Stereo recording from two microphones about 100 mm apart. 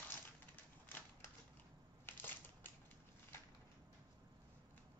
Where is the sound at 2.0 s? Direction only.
20° left (ahead or behind).